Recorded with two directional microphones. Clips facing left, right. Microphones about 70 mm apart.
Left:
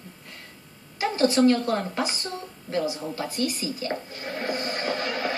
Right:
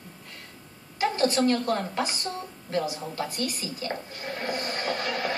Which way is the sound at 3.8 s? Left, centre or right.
Centre.